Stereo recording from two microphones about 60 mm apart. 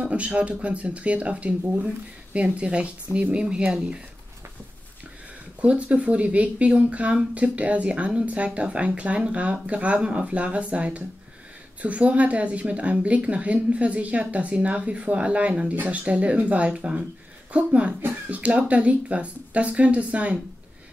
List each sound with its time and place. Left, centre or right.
0.0 s a woman's voice: right
5.6 s a woman's voice: right
18.3 s a woman's voice: right